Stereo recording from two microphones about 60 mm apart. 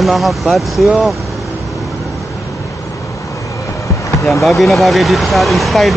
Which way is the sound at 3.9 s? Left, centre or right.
Left.